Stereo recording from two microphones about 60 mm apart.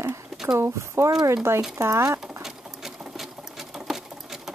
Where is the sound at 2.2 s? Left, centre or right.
Centre.